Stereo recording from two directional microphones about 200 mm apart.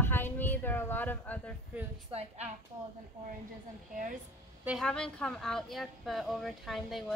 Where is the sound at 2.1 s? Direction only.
30° right (ahead or behind).